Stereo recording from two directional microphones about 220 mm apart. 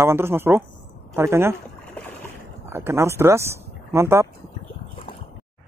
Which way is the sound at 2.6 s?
10° right (ahead or behind).